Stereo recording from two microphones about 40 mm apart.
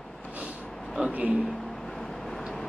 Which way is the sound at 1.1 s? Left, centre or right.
Right.